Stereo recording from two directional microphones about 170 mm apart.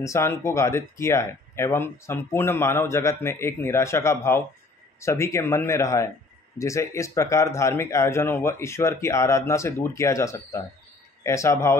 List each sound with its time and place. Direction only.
0.0 s speech: 15° left (ahead or behind)